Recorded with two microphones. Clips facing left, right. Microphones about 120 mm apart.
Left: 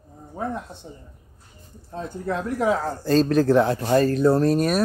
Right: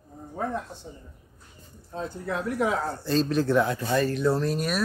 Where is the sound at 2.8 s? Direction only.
40° left (ahead or behind).